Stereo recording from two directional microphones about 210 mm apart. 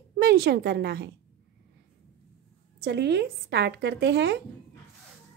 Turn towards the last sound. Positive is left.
turn(degrees=-55)  # may be behind; listen again after turning